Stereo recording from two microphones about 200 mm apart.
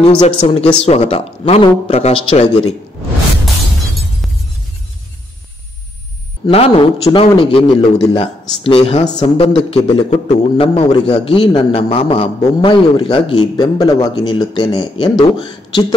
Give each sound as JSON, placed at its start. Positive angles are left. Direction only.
{"t": 0.0, "sound": "a man's voice", "side_deg": 30}
{"t": 6.4, "sound": "a man's voice", "side_deg": 30}